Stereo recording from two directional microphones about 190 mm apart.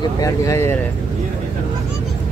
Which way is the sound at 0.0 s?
15° left (ahead or behind).